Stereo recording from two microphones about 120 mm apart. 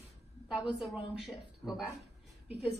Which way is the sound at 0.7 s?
Centre (ahead or behind).